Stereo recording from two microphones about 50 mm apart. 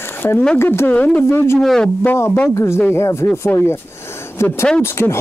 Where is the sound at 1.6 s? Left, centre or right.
Centre.